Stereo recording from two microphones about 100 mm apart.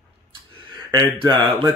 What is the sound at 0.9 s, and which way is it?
Speech, 55° right (ahead or behind).